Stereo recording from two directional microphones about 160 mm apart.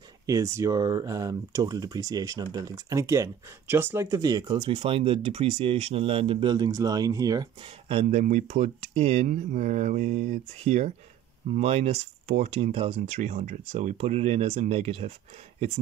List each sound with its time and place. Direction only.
0.3 s speech: 20° right (ahead or behind)
7.6 s speech: 40° right (ahead or behind)